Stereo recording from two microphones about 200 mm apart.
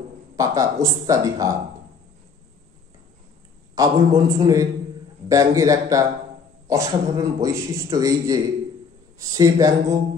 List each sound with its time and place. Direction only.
0.4 s a man's voice: 15° right (ahead or behind)
3.7 s a man's voice: 15° right (ahead or behind)